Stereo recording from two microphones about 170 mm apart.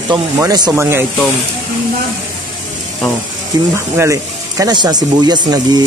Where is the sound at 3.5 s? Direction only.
25° right (ahead or behind).